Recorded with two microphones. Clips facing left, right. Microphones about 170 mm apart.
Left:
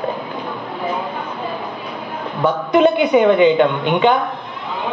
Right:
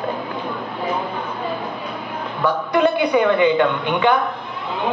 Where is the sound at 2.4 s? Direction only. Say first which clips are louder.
Left 4 dB; 20° left (ahead or behind).